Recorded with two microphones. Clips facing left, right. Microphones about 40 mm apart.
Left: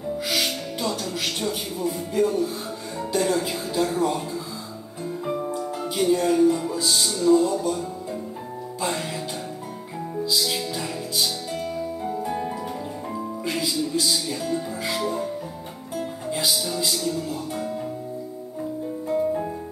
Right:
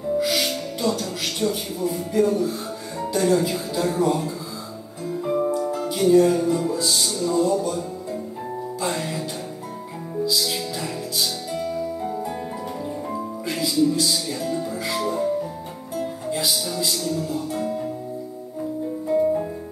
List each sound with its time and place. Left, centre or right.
0.2 s music: centre
3.8 s speech: centre
5.7 s music: centre
10.2 s music: centre
13.1 s speech: centre
16.0 s music: centre
16.4 s music: centre
17.6 s music: centre
19.0 s music: centre